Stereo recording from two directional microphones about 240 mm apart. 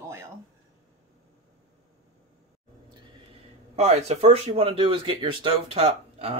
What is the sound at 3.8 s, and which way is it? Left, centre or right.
Speech, right.